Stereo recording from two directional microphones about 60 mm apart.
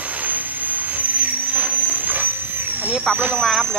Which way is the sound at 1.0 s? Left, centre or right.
Right.